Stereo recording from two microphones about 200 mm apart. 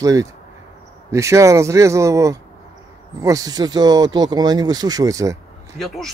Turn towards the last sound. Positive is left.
turn(degrees=0)  # may be behind; listen again after turning